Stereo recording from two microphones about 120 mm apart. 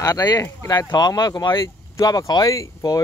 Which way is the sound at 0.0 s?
35° left (ahead or behind).